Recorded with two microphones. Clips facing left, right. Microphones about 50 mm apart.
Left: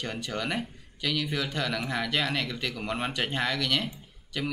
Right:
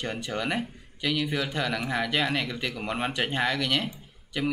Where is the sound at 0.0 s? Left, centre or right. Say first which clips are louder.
Right 2 dB; centre.